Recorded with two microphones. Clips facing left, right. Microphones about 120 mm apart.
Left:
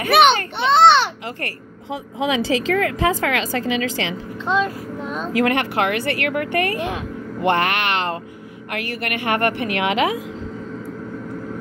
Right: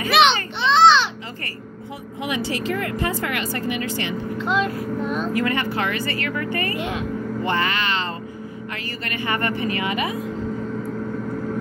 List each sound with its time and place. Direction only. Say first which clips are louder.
0.0 s a child's voice: left 3 dB; 55° left (ahead or behind); by 4.2 s 90° left
5.0 s speech: right 1 dB; 5° right (ahead or behind)
5.3 s a woman's voice: left 3 dB; 80° left